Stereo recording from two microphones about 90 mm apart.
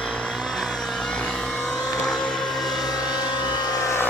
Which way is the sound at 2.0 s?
5° left (ahead or behind).